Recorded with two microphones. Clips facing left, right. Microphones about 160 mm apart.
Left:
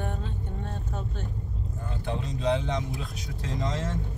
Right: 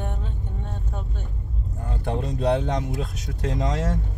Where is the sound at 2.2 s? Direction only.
60° right (ahead or behind).